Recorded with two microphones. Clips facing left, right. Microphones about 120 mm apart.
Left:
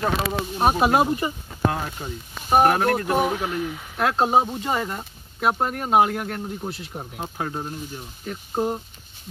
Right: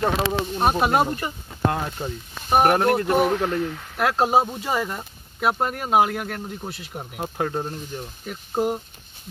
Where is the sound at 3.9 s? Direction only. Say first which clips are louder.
Even; 5° right (ahead or behind).